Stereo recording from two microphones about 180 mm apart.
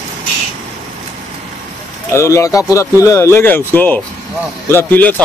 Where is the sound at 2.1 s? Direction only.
15° left (ahead or behind).